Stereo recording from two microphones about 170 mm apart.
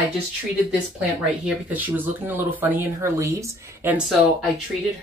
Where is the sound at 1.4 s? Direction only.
10° right (ahead or behind).